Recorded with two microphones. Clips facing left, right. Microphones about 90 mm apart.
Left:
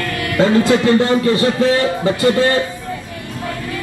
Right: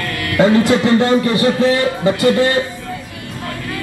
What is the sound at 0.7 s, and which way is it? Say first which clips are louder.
A man's voice: even; 20° right (ahead or behind).